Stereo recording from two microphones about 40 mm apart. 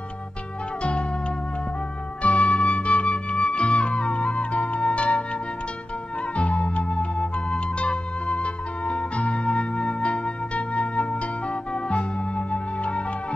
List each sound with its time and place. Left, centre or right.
2.2 s music: left
6.3 s music: left